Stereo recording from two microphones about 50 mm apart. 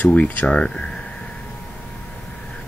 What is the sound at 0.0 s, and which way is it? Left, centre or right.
Speech, left.